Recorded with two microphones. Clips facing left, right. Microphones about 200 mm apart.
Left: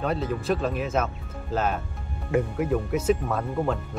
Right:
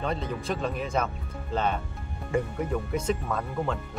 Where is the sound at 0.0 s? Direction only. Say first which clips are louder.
Left 4 dB; 5° left (ahead or behind).